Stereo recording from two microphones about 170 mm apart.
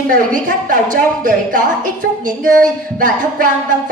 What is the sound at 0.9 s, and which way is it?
A woman's voice, 50° right (ahead or behind).